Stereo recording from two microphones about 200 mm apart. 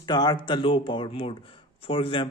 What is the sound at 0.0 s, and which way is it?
Speech, 20° left (ahead or behind).